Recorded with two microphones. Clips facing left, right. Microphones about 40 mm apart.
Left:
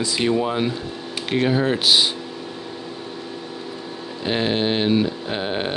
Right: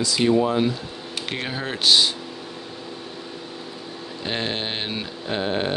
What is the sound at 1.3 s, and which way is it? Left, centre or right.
Speech, centre.